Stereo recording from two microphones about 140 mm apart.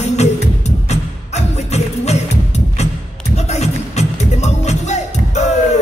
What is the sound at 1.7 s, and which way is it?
Music, 50° left (ahead or behind).